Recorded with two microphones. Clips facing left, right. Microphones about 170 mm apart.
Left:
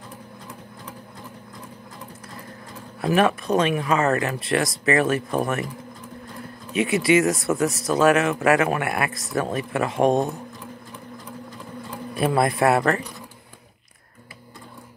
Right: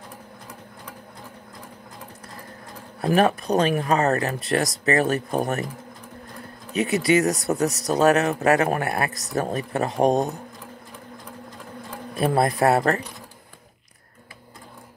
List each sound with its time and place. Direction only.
3.0 s speech: 40° right (ahead or behind)
6.7 s speech: 40° right (ahead or behind)
12.2 s speech: 35° right (ahead or behind)